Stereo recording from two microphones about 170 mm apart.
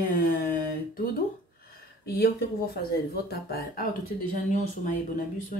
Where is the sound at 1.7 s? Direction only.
65° left (ahead or behind).